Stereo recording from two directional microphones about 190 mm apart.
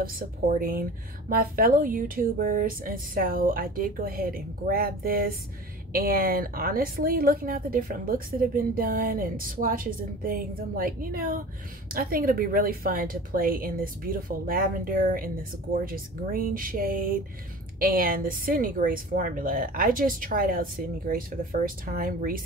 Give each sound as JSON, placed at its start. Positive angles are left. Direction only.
{"t": 0.0, "sound": "speech", "side_deg": -50}